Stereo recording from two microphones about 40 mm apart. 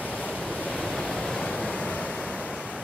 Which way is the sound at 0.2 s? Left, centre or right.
Right.